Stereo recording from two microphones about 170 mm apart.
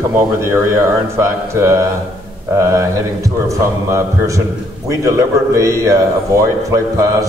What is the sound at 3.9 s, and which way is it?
A man's voice, 20° right (ahead or behind).